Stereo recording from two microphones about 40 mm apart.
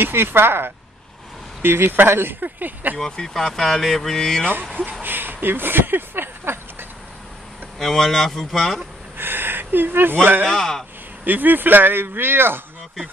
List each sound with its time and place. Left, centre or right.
0.0 s speech: right
2.4 s speech: right
3.0 s speech: centre
5.0 s a sound: right
7.8 s speech: centre
9.1 s speech: right
10.4 s speech: centre
11.2 s speech: right